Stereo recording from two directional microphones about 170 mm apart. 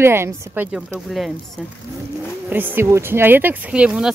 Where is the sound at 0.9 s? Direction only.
Centre (ahead or behind).